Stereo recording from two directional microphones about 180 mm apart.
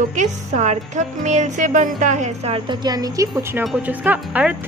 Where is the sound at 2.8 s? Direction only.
20° right (ahead or behind).